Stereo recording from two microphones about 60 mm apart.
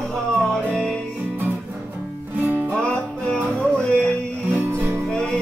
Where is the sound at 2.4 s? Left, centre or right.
Right.